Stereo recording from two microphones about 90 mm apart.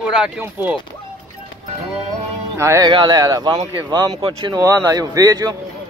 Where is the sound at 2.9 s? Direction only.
55° right (ahead or behind).